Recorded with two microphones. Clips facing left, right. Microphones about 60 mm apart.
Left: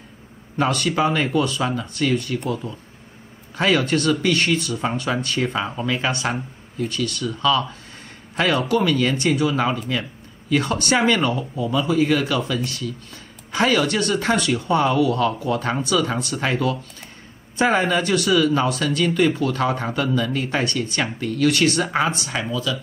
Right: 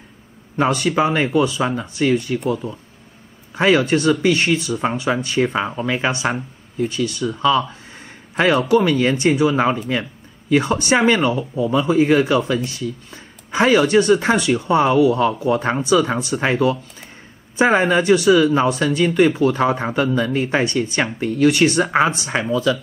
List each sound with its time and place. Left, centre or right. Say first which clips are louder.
0.6 s speech: right 3 dB; centre; by 22.8 s right